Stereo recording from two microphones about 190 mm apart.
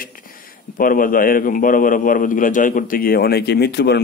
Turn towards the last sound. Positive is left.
turn(degrees=60)  # may be behind; listen again after turning